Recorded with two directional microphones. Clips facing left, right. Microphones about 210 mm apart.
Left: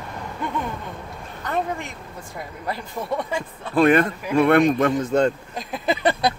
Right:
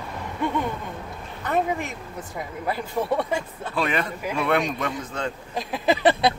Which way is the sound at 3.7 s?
50° left (ahead or behind).